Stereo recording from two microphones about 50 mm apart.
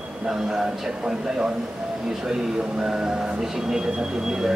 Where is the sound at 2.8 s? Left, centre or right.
Centre.